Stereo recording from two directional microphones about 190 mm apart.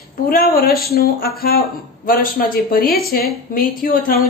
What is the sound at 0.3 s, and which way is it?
A woman's voice, 50° left (ahead or behind).